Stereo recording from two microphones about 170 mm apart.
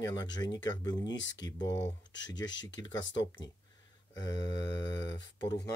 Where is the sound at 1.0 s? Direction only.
90° left.